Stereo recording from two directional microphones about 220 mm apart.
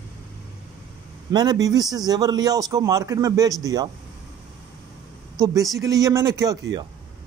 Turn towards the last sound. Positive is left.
turn(degrees=-15)  # may be behind; listen again after turning